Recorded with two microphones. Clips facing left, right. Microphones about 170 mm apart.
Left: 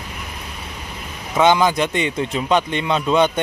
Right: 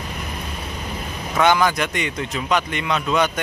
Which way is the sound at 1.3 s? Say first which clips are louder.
Left 2 dB; 20° left (ahead or behind).